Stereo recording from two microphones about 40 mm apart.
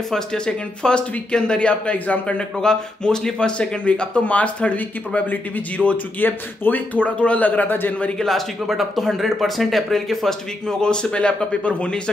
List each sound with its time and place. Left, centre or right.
0.1 s speech: centre
2.6 s speech: centre
4.4 s speech: left
5.8 s speech: centre
6.1 s speech: left
7.0 s speech: left
8.2 s speech: centre
10.8 s speech: left